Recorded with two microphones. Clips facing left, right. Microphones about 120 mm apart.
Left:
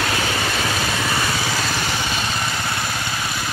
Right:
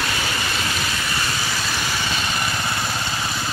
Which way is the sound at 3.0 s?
10° left (ahead or behind).